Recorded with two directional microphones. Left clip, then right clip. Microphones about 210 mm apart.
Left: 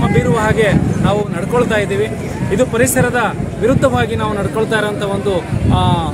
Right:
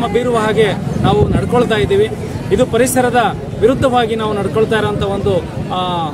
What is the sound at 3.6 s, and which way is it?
Speech, 25° right (ahead or behind).